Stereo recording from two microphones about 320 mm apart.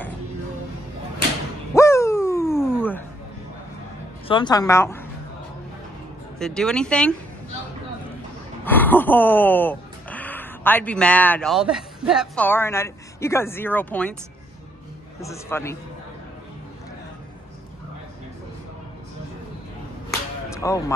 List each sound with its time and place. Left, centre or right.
1.7 s a sound: centre
2.6 s music: centre
4.3 s a woman's voice: centre
6.4 s speech: centre
8.6 s speech: centre
15.1 s a woman's voice: centre
20.1 s whip: centre